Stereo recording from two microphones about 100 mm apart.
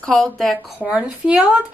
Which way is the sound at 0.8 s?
10° right (ahead or behind).